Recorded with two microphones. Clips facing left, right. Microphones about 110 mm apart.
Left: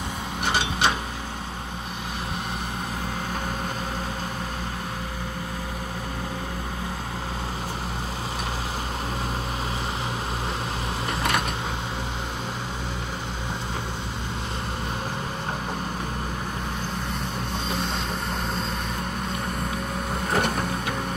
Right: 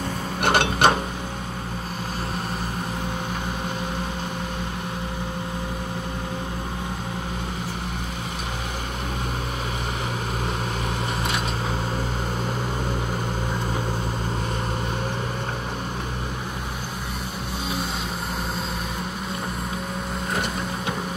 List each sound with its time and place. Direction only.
0.4 s mechanisms: 60° right (ahead or behind)